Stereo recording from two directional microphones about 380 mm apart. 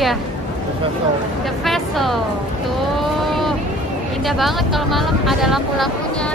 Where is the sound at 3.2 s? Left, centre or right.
Centre.